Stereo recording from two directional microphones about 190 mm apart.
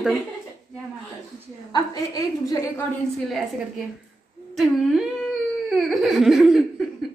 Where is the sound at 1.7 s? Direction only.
20° left (ahead or behind).